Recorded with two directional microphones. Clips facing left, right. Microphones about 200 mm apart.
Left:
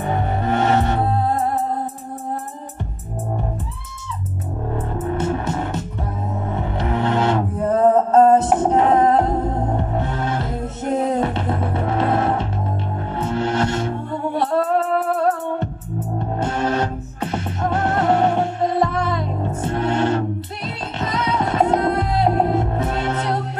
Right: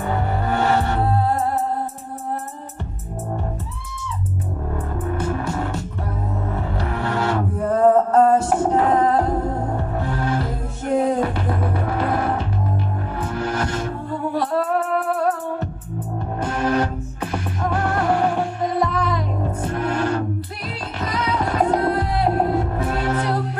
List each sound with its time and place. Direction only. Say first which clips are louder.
0.0 s music: left 1 dB; 20° left (ahead or behind)
4.7 s music: left 3 dB; 25° left (ahead or behind)